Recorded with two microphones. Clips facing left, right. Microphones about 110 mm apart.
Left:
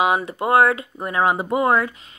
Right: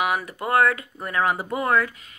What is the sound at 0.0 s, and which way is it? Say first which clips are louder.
Speech: left 5 dB; 25° left (ahead or behind).